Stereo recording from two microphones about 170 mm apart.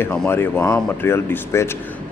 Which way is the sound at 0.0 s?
10° left (ahead or behind).